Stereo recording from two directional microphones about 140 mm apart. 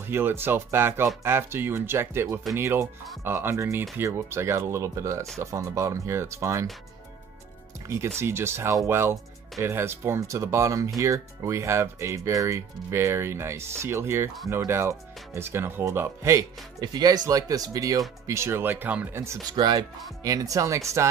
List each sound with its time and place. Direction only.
0.0 s speech: 15° right (ahead or behind)
8.2 s speech: 20° right (ahead or behind)
19.5 s speech: 30° right (ahead or behind)